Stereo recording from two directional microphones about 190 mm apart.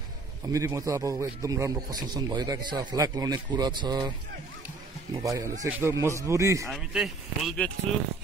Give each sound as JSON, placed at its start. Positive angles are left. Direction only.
{"t": 0.5, "sound": "a man's voice", "side_deg": -15}
{"t": 5.1, "sound": "speech", "side_deg": -15}
{"t": 6.7, "sound": "speech", "side_deg": 0}